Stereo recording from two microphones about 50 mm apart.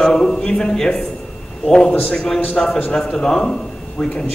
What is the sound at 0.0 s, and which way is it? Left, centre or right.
A man's voice, centre.